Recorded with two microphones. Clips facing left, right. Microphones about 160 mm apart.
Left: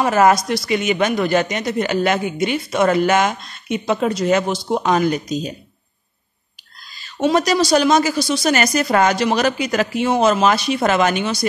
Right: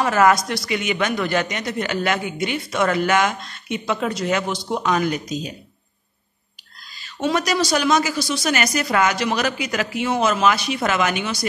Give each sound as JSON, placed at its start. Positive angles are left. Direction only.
{"t": 0.0, "sound": "speech", "side_deg": 20}
{"t": 7.3, "sound": "speech", "side_deg": 35}